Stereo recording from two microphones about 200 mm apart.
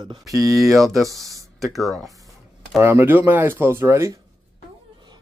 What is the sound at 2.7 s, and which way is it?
A man's voice, 10° right (ahead or behind).